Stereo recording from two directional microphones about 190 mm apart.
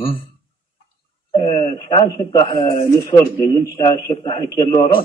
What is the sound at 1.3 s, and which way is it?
A man's voice, 25° left (ahead or behind).